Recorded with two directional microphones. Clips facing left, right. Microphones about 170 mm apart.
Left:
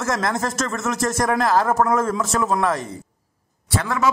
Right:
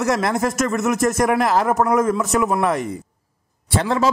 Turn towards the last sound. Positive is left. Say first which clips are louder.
# right 3 dB
turn(degrees=-30)  # may be behind; listen again after turning